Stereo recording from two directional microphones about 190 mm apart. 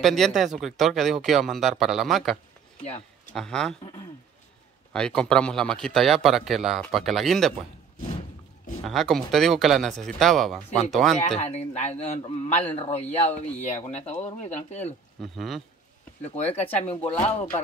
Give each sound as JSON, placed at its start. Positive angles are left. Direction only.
{"t": 0.0, "sound": "a man's voice", "side_deg": 0}
{"t": 3.3, "sound": "a man's voice", "side_deg": 5}
{"t": 3.8, "sound": "speech", "side_deg": 25}
{"t": 4.9, "sound": "a man's voice", "side_deg": 5}
{"t": 8.8, "sound": "a man's voice", "side_deg": 0}
{"t": 11.3, "sound": "a man's voice", "side_deg": 35}
{"t": 15.2, "sound": "a man's voice", "side_deg": 0}
{"t": 16.3, "sound": "a man's voice", "side_deg": 35}